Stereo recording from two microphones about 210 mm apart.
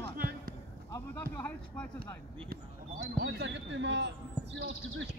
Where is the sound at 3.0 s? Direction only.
55° right (ahead or behind).